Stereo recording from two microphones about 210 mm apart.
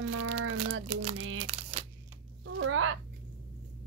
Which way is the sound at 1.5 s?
30° right (ahead or behind).